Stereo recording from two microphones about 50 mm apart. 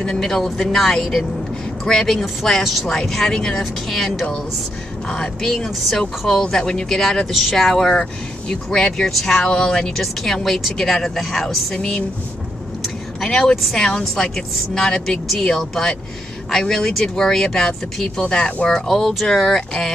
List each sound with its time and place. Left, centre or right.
0.0 s speech: centre
5.4 s speech: centre
7.9 s speech: centre
11.7 s speech: centre
13.2 s speech: centre